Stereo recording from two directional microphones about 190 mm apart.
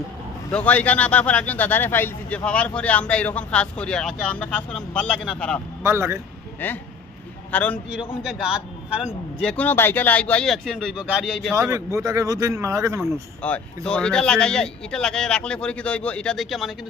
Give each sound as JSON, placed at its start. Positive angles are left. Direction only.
{"t": 0.5, "sound": "speech", "side_deg": 5}
{"t": 5.8, "sound": "speech", "side_deg": -15}
{"t": 6.6, "sound": "speech", "side_deg": 10}
{"t": 8.2, "sound": "speech", "side_deg": -5}
{"t": 11.5, "sound": "speech", "side_deg": -15}
{"t": 13.0, "sound": "speech", "side_deg": 5}